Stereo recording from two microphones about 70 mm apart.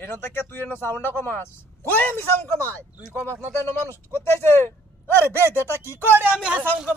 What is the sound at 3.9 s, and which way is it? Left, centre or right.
Speech, left.